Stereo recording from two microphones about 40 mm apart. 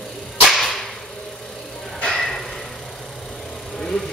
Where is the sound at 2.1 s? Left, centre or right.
Centre.